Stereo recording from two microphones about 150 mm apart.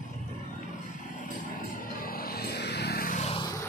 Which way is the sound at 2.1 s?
85° left.